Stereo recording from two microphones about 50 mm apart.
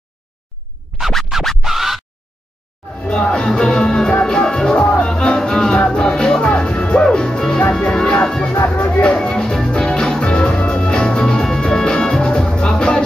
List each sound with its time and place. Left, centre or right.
1.6 s music: centre
3.0 s music: centre
8.6 s music: left
9.0 s music: centre